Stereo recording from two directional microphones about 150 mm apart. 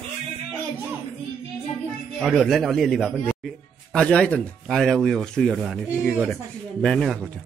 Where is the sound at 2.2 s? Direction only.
Centre (ahead or behind).